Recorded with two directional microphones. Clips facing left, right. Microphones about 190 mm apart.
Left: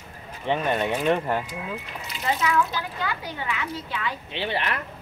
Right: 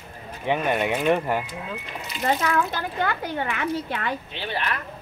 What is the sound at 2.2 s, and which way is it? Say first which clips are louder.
Speech: right 1 dB; 50° right (ahead or behind).